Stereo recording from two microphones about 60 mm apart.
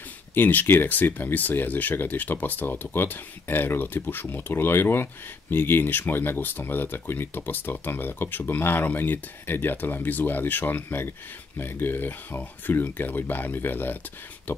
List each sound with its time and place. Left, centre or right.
0.3 s speech: left